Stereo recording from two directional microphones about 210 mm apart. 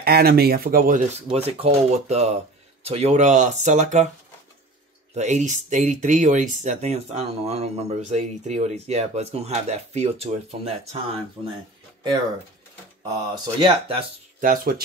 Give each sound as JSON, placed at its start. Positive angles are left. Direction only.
{"t": 0.0, "sound": "speech", "side_deg": -50}
{"t": 1.3, "sound": "speech", "side_deg": -30}
{"t": 5.1, "sound": "speech", "side_deg": -35}
{"t": 13.1, "sound": "speech", "side_deg": -20}
{"t": 14.4, "sound": "speech", "side_deg": -40}